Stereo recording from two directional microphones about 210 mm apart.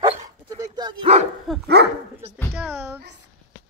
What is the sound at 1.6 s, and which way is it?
Speech, 50° right (ahead or behind).